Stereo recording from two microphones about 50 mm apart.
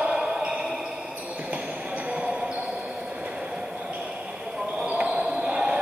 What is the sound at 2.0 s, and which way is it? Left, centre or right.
Music, right.